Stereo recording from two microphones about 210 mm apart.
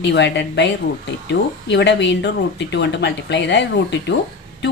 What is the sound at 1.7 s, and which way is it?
A woman's voice, 55° left (ahead or behind).